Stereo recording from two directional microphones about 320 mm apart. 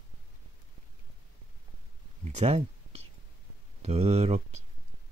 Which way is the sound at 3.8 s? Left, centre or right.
Centre.